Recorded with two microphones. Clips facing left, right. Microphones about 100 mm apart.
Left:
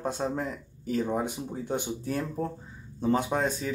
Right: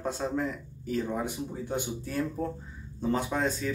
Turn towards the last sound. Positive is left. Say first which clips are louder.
# left 3 dB
turn(degrees=20)  # may be behind; listen again after turning